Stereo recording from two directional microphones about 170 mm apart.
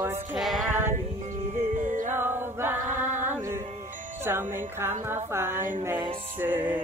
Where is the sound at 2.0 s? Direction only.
15° right (ahead or behind).